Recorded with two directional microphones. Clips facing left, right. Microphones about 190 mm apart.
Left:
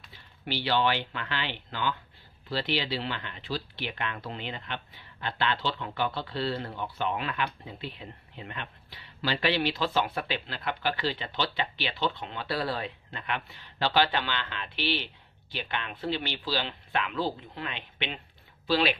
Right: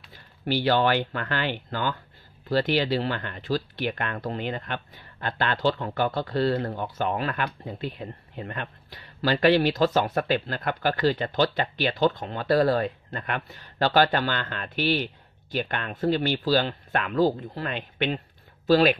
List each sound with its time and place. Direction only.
0.1 s speech: 45° right (ahead or behind)